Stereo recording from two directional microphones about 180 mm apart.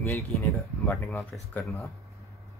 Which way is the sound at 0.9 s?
Centre (ahead or behind).